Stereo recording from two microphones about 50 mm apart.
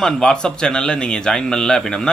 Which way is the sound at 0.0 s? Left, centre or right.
Centre.